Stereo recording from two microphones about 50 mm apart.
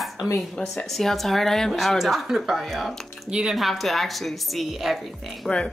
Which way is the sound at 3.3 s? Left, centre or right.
Centre.